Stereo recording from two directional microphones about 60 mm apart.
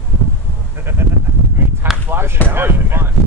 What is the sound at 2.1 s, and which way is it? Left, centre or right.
Basketball bounce, right.